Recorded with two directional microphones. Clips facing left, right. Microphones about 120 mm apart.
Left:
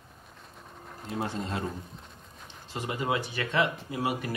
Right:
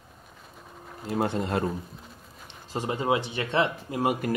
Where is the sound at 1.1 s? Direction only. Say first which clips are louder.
Right 6 dB; 60° right (ahead or behind).